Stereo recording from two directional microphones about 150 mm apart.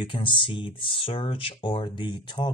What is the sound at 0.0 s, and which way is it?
Speech, 35° left (ahead or behind).